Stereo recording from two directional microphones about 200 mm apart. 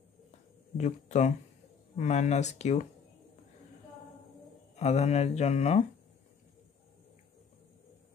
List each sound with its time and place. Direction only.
0.7 s speech: 35° left (ahead or behind)
4.7 s speech: 35° left (ahead or behind)